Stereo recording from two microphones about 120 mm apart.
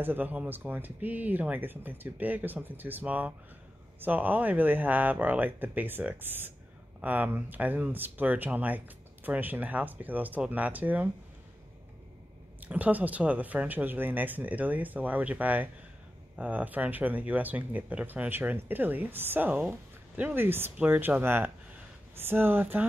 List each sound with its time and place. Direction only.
0.0 s speech: 15° right (ahead or behind)
12.5 s speech: 10° right (ahead or behind)